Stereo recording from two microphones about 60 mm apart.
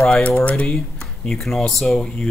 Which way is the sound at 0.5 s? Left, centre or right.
Centre.